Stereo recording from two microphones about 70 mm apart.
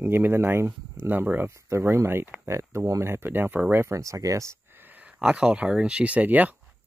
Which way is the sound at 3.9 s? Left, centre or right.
Right.